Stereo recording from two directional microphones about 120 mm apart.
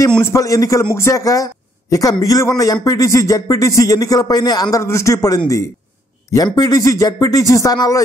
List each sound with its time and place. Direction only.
0.2 s a man's voice: 25° left (ahead or behind)